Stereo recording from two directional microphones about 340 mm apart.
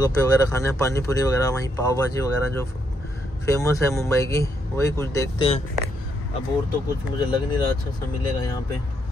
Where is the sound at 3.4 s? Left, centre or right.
Centre.